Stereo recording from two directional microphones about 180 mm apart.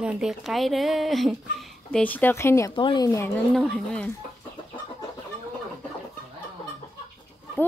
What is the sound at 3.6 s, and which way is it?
Speech, 5° left (ahead or behind).